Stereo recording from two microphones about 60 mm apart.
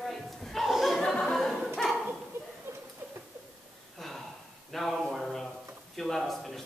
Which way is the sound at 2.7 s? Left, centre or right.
Right.